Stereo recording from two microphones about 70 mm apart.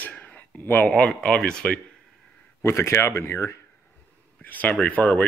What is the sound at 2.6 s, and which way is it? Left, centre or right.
Speech, left.